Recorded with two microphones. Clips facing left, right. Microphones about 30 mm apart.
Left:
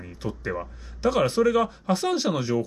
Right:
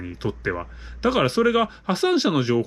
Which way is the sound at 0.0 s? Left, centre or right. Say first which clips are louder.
Right 5 dB; right.